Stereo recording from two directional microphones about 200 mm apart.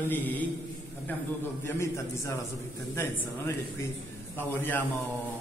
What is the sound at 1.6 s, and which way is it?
A man's voice, 15° left (ahead or behind).